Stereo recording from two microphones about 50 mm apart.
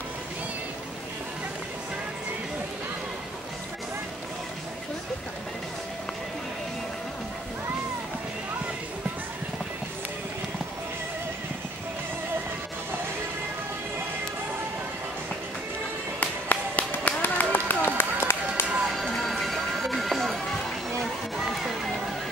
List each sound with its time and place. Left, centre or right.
16.2 s run: left
18.9 s music: centre
21.0 s a sound: centre